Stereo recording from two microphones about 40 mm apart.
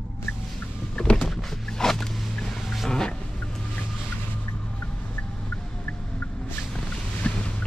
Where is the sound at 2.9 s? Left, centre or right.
Centre.